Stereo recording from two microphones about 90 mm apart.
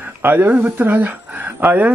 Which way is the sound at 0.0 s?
20° right (ahead or behind).